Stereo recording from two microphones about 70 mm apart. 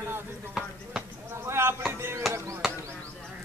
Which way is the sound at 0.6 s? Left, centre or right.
Centre.